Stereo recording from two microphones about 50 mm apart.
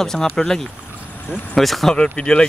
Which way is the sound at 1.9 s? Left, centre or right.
Centre.